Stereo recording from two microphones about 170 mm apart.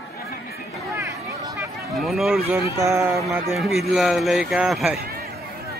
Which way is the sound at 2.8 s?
15° right (ahead or behind).